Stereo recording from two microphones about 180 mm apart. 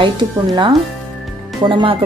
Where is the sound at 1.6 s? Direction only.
25° right (ahead or behind).